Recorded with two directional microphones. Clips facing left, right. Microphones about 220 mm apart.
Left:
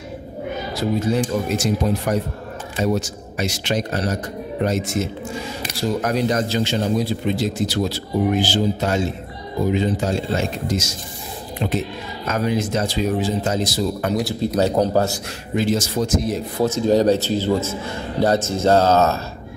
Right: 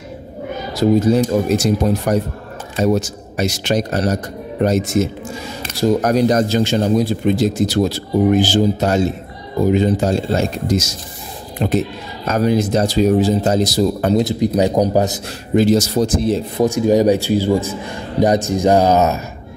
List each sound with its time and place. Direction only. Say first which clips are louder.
0.7 s speech: right 7 dB; 40° right (ahead or behind)
14.1 s speech: right 5 dB; 20° right (ahead or behind)
15.5 s speech: right 7 dB; 40° right (ahead or behind)
16.6 s speech: right 3 dB; 15° right (ahead or behind)